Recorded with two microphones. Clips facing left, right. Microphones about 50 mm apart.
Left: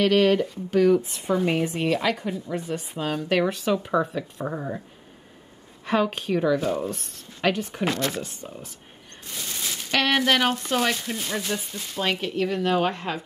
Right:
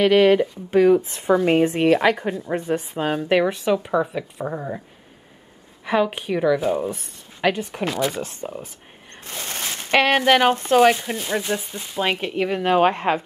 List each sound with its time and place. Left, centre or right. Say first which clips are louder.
0.0 s speech: right 4 dB; centre
1.0 s a woman's voice: right 5 dB; right; by 4.8 s centre
5.9 s a woman's voice: right 2 dB; centre
8.4 s speech: right 7 dB; right